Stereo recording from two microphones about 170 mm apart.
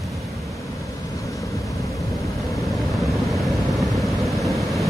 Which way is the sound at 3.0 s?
Centre (ahead or behind).